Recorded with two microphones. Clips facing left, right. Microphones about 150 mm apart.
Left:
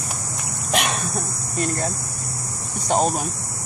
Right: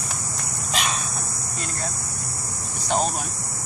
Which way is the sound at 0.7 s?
60° left (ahead or behind).